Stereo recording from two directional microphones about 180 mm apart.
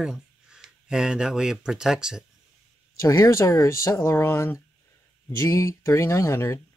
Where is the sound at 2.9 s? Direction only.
20° left (ahead or behind).